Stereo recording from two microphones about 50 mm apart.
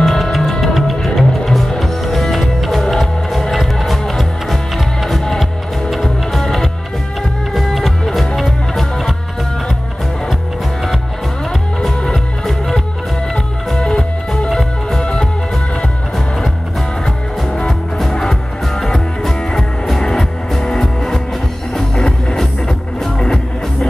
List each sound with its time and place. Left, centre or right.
0.0 s music: centre
12.1 s music: centre
13.7 s music: centre
14.5 s music: centre
18.3 s music: centre